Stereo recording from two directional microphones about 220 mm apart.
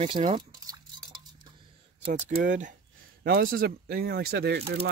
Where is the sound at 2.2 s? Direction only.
35° right (ahead or behind).